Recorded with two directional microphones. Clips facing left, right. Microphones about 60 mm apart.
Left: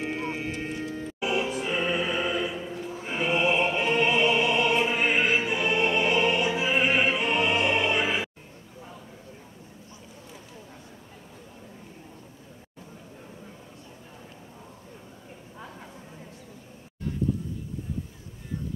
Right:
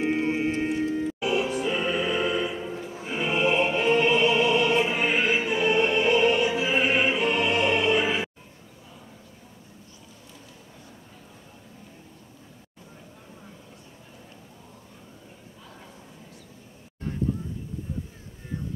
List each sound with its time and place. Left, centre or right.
0.0 s whale vocalization: right
0.7 s music: right
1.2 s music: centre
2.3 s music: centre
3.2 s music: centre